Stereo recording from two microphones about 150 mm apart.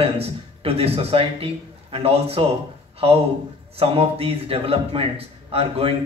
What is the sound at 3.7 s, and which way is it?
A man's voice, 40° right (ahead or behind).